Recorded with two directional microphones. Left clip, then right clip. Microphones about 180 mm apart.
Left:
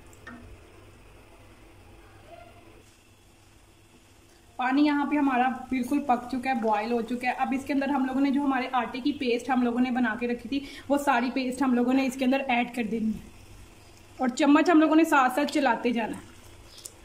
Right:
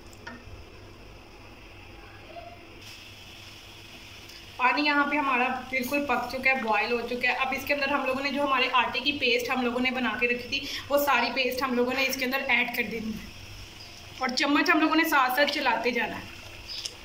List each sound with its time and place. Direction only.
4.6 s a woman's voice: 60° left (ahead or behind)
14.2 s a woman's voice: 55° left (ahead or behind)